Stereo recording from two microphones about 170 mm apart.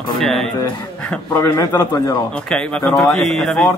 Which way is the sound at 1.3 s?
20° left (ahead or behind).